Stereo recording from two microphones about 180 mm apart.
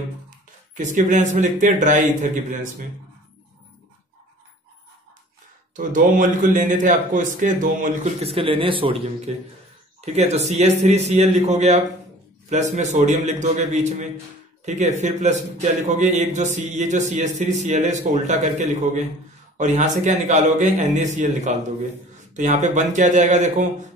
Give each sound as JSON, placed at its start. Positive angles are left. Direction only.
{"t": 0.7, "sound": "speech", "side_deg": -45}
{"t": 5.8, "sound": "a man's voice", "side_deg": -45}